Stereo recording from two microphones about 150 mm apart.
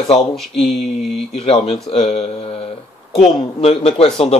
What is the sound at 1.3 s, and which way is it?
Speech, 45° left (ahead or behind).